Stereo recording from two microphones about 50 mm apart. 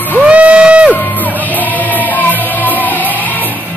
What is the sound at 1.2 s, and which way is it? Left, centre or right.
Music, left.